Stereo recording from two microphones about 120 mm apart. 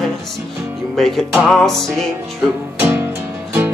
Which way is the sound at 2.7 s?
15° right (ahead or behind).